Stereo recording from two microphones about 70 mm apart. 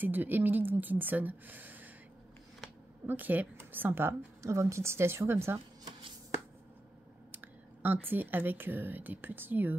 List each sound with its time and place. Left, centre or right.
0.0 s speech: right
3.1 s speech: right
4.4 s a woman's voice: right
7.3 s speech: right